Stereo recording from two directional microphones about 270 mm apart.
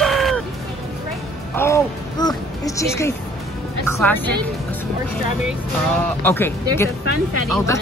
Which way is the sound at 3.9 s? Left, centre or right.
Centre.